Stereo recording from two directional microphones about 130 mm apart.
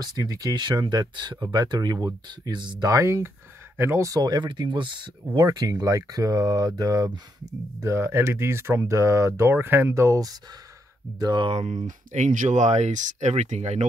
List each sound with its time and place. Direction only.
0.0 s speech: 30° right (ahead or behind)
11.1 s speech: 35° right (ahead or behind); by 13.8 s 65° right (ahead or behind)